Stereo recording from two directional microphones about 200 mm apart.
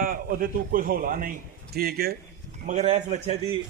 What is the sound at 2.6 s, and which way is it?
Speech, 35° right (ahead or behind).